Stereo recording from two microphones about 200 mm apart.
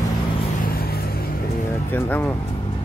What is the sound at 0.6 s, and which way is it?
Vehicle, 50° left (ahead or behind).